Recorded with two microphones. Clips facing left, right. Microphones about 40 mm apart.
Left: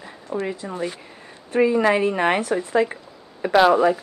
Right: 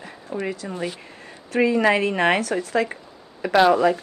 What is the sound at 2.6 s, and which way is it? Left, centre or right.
Speech, centre.